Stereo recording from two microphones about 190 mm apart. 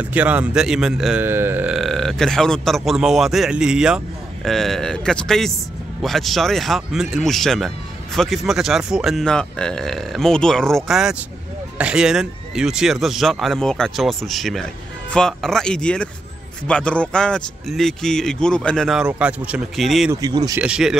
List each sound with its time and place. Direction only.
0.0 s speech: 10° right (ahead or behind)
20.1 s speech: 20° right (ahead or behind)
20.6 s speech: 5° right (ahead or behind)